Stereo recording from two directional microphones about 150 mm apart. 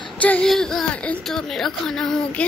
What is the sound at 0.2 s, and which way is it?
Speech, 5° left (ahead or behind).